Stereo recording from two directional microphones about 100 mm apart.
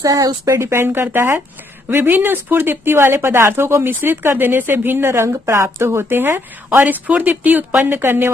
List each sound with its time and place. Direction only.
0.0 s speech: 35° right (ahead or behind)